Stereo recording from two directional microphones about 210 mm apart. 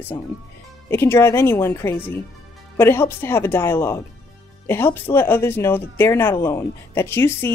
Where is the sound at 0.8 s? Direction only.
10° left (ahead or behind).